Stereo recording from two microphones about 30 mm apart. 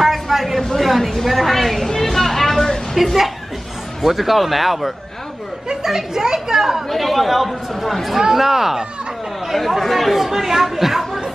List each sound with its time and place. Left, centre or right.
0.0 s vehicle: centre
0.7 s a sound: centre
4.0 s speech: centre
5.9 s a child's voice: centre
6.9 s speech: centre
8.2 s a child's voice: centre
9.7 s speech: centre